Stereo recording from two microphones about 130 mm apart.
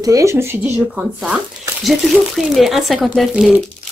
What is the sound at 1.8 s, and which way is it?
A woman's voice, centre (ahead or behind).